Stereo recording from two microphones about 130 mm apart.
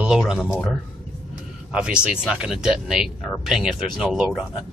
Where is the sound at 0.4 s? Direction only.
10° left (ahead or behind).